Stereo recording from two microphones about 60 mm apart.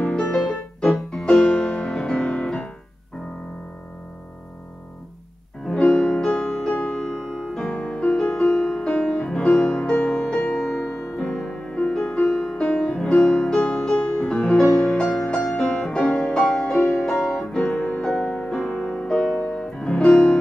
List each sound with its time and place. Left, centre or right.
0.0 s music: centre
0.3 s music: centre
5.7 s music: centre
9.7 s music: left
10.0 s music: centre
11.5 s music: centre
14.8 s music: centre
18.8 s music: centre